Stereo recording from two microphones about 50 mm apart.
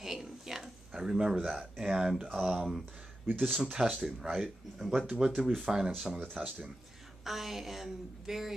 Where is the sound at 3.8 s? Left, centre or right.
Centre.